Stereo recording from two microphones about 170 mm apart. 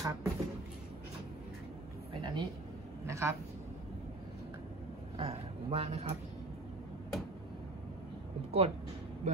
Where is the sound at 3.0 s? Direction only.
15° right (ahead or behind).